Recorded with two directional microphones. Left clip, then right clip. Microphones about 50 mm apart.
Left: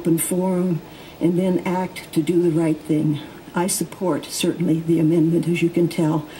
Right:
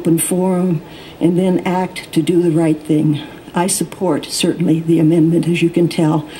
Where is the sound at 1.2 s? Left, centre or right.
Centre.